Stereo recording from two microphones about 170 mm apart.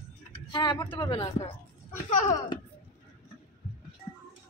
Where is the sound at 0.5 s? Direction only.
25° left (ahead or behind).